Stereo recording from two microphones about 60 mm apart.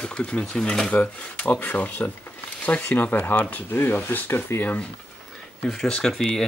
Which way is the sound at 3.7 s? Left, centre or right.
Left.